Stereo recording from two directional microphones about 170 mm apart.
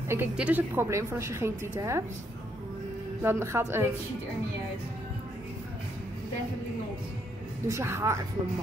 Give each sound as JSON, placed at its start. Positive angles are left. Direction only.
{"t": 0.1, "sound": "a woman's voice", "side_deg": -10}
{"t": 3.2, "sound": "a woman's voice", "side_deg": -15}
{"t": 7.6, "sound": "a woman's voice", "side_deg": -15}